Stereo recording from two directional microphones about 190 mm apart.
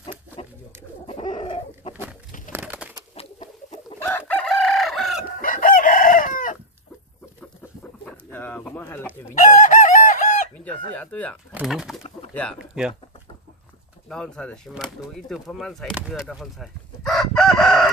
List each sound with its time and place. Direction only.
1.0 s chicken: 25° left (ahead or behind)
2.5 s pigeon: 5° right (ahead or behind)
3.2 s a sound: 35° left (ahead or behind)
4.3 s chicken: centre (ahead or behind)
5.4 s chicken: 45° left (ahead or behind)
8.0 s bird: 10° left (ahead or behind)
9.3 s chicken: 40° left (ahead or behind)
11.0 s speech: 5° left (ahead or behind)
14.0 s speech: 5° left (ahead or behind)